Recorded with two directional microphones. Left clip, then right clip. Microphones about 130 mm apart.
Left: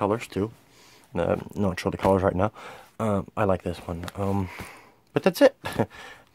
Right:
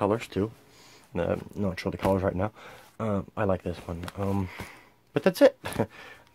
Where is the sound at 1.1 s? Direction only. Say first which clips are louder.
Left 3 dB; 30° left (ahead or behind).